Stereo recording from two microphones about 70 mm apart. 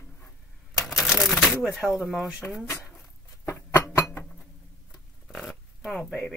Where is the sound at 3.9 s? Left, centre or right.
Left.